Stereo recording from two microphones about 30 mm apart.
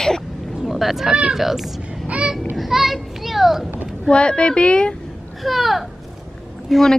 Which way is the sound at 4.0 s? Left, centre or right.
Left.